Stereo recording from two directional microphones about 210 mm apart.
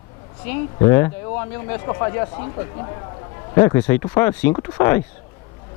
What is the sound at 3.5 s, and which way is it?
Speech, 10° left (ahead or behind).